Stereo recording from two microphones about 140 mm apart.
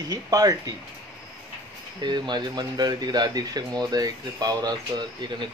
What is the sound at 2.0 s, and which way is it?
Speech, 30° right (ahead or behind).